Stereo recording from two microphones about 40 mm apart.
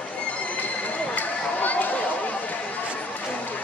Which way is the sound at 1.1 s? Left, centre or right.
Left.